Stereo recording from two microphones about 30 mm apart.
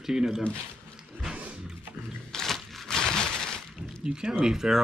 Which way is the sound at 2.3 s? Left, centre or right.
Centre.